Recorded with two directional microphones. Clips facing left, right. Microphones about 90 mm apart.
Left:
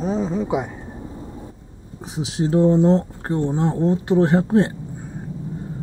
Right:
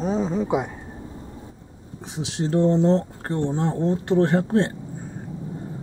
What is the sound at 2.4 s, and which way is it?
Speech, 10° left (ahead or behind).